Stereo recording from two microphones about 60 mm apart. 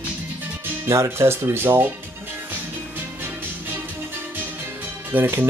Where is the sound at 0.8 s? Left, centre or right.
Right.